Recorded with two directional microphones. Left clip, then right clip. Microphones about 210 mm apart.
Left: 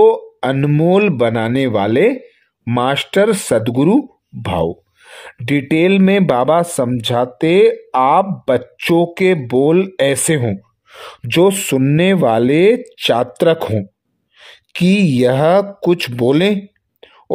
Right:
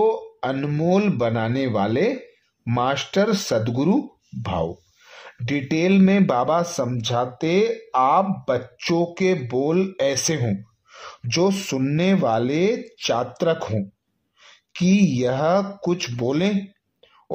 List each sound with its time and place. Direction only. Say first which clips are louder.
0.0 s speech: left 9 dB; 40° left (ahead or behind)